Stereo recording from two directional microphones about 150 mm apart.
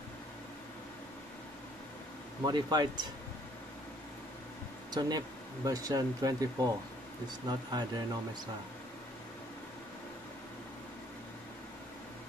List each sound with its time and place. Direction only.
2.4 s speech: 30° right (ahead or behind)
4.9 s speech: 25° right (ahead or behind)